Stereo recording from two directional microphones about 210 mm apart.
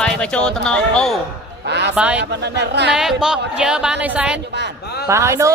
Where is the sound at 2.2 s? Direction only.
55° right (ahead or behind).